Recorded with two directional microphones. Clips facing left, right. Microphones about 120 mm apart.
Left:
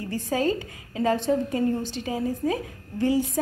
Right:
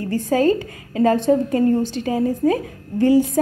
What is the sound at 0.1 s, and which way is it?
A woman's voice, 50° right (ahead or behind).